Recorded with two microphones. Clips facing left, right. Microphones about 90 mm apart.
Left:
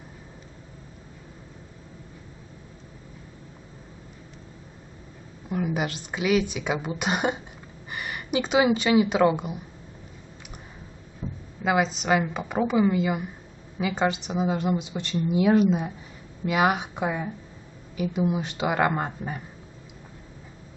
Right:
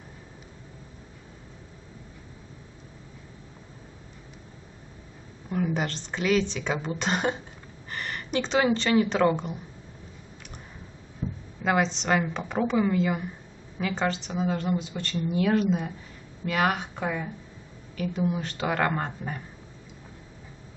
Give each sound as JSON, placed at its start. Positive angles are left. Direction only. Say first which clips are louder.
{"t": 5.5, "sound": "a woman's voice", "louder": "left 1 dB", "side_deg": 5}
{"t": 11.2, "sound": "a sound", "louder": "right 2 dB", "side_deg": 5}
{"t": 11.6, "sound": "a woman's voice", "louder": "left 1 dB", "side_deg": 5}